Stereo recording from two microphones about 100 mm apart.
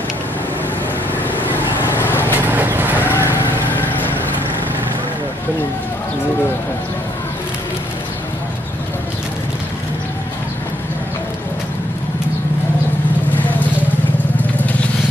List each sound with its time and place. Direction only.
2.0 s vehicle: 20° left (ahead or behind)
2.3 s vehicle: 20° right (ahead or behind)
3.7 s vehicle: 20° left (ahead or behind)
14.6 s vehicle: 15° left (ahead or behind)